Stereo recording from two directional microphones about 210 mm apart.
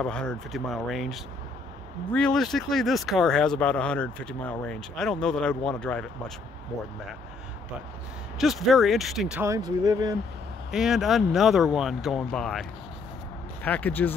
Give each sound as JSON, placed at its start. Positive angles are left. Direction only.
{"t": 0.0, "sound": "speech", "side_deg": 5}
{"t": 8.4, "sound": "speech", "side_deg": 0}
{"t": 9.4, "sound": "speech", "side_deg": -15}
{"t": 10.7, "sound": "speech", "side_deg": 0}